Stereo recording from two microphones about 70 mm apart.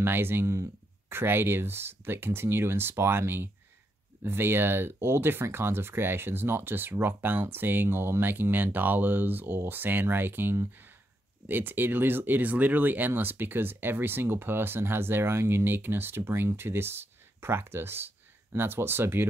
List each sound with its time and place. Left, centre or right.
0.0 s speech: right